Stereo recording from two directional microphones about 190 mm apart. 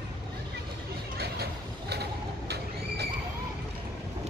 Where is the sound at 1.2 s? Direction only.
60° right (ahead or behind).